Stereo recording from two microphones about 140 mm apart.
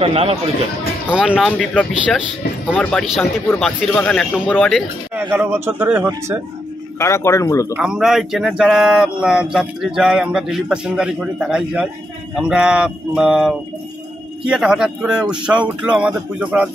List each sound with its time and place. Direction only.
0.0 s speech: 45° right (ahead or behind)
1.1 s speech: 5° right (ahead or behind)
2.8 s speech: 10° left (ahead or behind)
5.3 s speech: 15° right (ahead or behind)
7.0 s speech: 20° left (ahead or behind)
7.7 s speech: 10° right (ahead or behind)